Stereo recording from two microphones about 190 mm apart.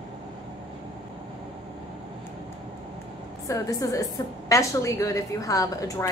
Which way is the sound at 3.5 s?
20° left (ahead or behind).